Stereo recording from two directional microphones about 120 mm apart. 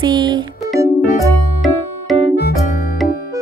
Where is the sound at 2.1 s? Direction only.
Centre (ahead or behind).